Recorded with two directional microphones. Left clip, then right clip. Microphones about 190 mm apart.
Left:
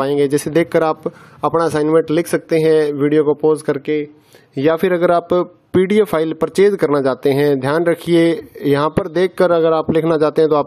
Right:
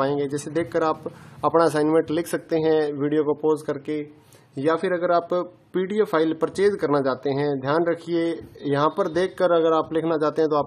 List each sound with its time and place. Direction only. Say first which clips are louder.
0.0 s speech: left 8 dB; 35° left (ahead or behind)